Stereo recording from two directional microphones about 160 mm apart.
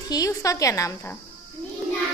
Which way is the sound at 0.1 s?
20° left (ahead or behind).